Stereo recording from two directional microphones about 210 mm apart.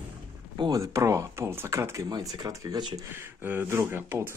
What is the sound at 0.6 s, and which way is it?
Speech, 15° right (ahead or behind).